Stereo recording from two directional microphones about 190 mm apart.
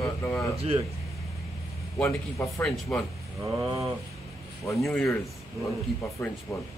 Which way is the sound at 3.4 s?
15° right (ahead or behind).